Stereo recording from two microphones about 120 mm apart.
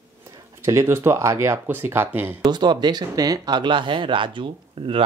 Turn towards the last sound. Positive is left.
turn(degrees=-45)  # may be behind; listen again after turning